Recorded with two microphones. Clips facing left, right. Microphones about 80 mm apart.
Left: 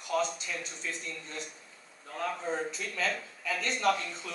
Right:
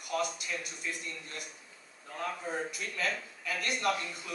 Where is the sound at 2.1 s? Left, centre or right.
Centre.